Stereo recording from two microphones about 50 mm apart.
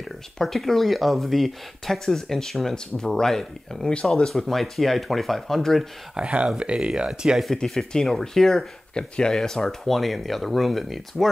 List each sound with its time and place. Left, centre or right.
0.4 s speech: centre
6.1 s speech: right
7.1 s speech: centre
7.6 s speech: centre